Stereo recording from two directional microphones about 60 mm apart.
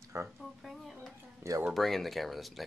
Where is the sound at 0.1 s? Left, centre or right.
Right.